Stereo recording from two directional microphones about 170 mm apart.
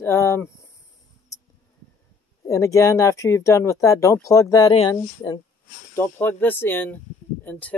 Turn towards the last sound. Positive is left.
turn(degrees=10)  # may be behind; listen again after turning